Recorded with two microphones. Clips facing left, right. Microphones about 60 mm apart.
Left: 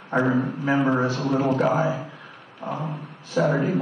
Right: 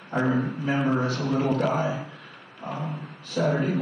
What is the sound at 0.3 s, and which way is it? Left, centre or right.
Speech, centre.